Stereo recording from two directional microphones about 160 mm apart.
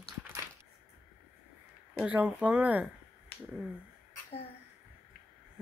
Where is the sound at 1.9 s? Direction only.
5° right (ahead or behind).